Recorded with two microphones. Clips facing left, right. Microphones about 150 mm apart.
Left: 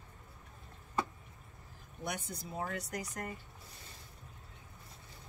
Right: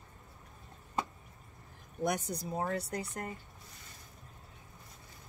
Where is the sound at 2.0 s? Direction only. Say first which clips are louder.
Right 8 dB; 40° right (ahead or behind).